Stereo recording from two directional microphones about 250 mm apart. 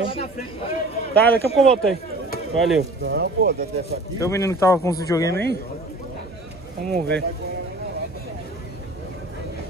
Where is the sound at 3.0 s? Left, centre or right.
Right.